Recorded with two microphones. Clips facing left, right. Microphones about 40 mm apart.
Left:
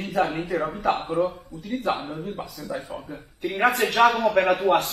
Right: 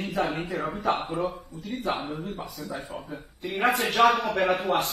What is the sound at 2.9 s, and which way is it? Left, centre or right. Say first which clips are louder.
Speech: left 2 dB; left.